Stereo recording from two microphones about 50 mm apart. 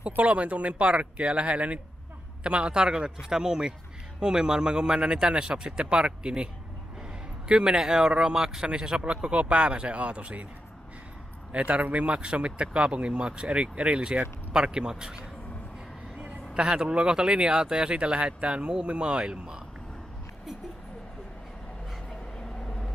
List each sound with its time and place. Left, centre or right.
0.2 s a man's voice: right
11.5 s a man's voice: right
22.4 s vehicle: centre